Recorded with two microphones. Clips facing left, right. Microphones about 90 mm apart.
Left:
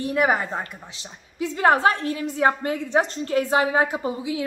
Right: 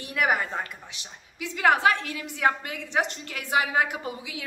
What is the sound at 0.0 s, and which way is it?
A woman's voice, 30° left (ahead or behind).